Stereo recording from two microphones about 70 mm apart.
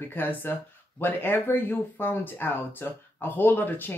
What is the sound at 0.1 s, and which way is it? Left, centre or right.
Speech, left.